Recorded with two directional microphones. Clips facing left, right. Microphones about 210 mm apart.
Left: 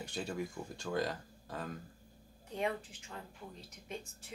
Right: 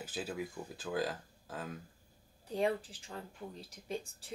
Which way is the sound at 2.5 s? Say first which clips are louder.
Right 4 dB; 35° right (ahead or behind).